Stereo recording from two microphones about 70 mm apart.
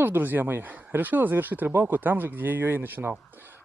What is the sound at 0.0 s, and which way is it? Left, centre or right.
Speech, right.